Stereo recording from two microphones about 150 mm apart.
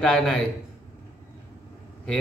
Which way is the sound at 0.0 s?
5° left (ahead or behind).